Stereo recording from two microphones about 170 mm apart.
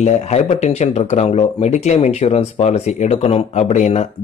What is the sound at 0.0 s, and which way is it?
Speech, 40° left (ahead or behind).